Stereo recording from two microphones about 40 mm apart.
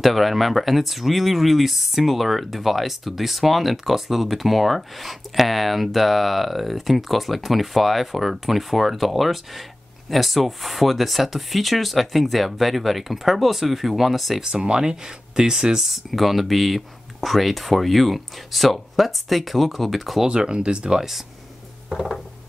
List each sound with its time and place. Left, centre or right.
0.0 s speech: centre
14.4 s speech: right
15.8 s speech: centre
20.2 s speech: right
21.8 s a sound: centre